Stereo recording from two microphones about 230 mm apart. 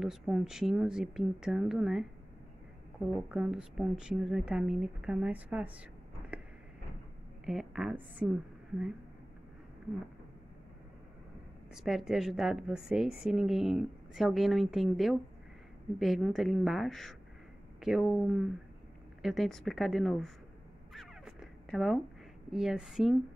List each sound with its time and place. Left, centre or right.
0.0 s a woman's voice: centre
3.1 s a woman's voice: centre
6.3 s a sound: centre
7.4 s a woman's voice: centre
11.7 s a woman's voice: centre
20.9 s zipper: centre
22.5 s a woman's voice: centre